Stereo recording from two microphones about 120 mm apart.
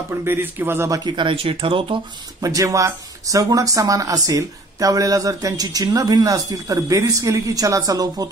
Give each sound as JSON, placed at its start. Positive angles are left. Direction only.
{"t": 0.2, "sound": "speech", "side_deg": -15}
{"t": 2.4, "sound": "speech", "side_deg": -30}